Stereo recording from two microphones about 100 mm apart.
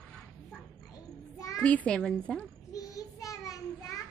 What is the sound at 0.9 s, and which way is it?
Child singing, 35° left (ahead or behind).